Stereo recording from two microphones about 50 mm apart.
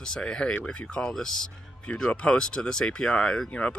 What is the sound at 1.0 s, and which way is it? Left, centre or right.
Speech, centre.